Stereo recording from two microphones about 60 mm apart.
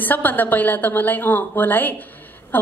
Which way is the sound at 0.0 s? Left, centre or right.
Left.